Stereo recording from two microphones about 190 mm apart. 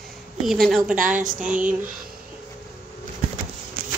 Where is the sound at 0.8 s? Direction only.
45° right (ahead or behind).